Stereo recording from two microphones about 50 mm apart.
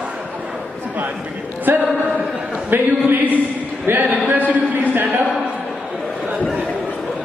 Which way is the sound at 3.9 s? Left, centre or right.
Right.